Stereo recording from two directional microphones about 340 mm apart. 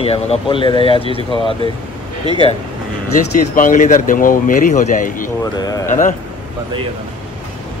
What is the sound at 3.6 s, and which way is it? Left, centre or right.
Speech, left.